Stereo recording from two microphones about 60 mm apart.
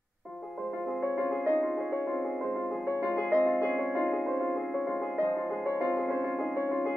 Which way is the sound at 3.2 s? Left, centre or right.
Left.